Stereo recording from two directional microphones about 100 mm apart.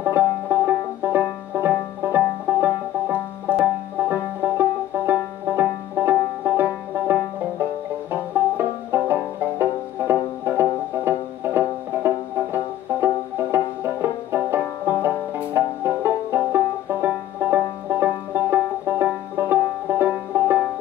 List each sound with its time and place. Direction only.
0.0 s banjo: 20° right (ahead or behind)
12.5 s music: 20° right (ahead or behind)
14.0 s banjo: 20° right (ahead or behind)